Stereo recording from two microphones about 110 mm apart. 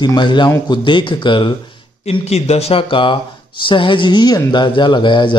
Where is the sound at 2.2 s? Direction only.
75° left (ahead or behind).